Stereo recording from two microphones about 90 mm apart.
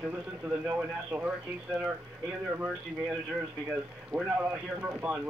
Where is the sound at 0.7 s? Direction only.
20° right (ahead or behind).